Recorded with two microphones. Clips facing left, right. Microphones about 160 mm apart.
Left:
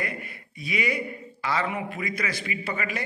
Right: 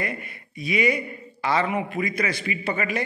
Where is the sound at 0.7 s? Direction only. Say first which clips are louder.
Right 5 dB; 20° right (ahead or behind).